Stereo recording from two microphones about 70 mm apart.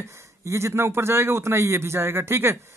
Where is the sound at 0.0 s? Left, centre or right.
Right.